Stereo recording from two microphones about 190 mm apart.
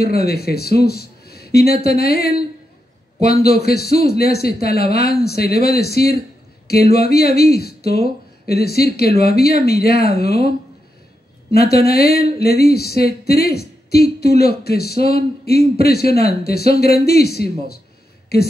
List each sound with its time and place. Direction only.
0.0 s a man's voice: 55° left (ahead or behind)
3.4 s a man's voice: 55° left (ahead or behind)
11.5 s a man's voice: 55° left (ahead or behind)